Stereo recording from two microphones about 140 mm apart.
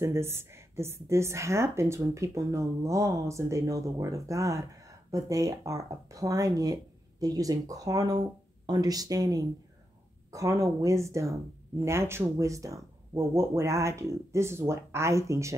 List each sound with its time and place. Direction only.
0.0 s speech: 20° right (ahead or behind)